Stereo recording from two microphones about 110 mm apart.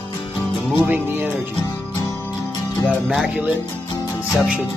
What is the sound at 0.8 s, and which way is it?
Music, 15° right (ahead or behind).